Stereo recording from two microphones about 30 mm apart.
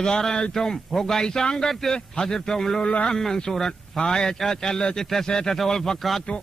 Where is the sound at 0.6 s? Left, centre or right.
Centre.